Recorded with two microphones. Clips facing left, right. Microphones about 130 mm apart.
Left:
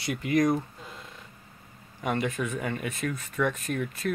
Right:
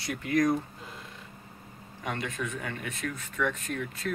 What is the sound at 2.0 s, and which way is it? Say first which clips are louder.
Speech: left 5 dB; 10° left (ahead or behind).